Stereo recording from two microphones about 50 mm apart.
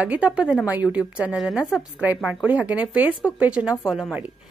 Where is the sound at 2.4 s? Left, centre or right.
Right.